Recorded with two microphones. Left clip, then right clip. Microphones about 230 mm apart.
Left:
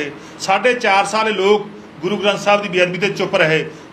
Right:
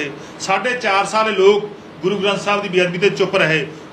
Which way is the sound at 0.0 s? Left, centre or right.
Left.